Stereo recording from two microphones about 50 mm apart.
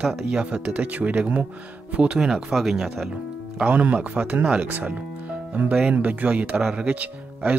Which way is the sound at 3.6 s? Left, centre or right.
Right.